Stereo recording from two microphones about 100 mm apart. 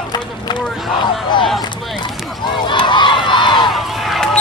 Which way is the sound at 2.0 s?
50° left (ahead or behind).